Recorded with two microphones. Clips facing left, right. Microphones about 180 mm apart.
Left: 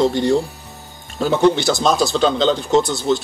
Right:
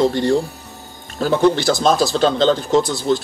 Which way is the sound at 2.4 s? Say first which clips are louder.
Right 2 dB; 45° right (ahead or behind).